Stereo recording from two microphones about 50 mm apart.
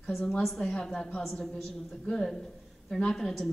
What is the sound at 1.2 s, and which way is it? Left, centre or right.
Speech, centre.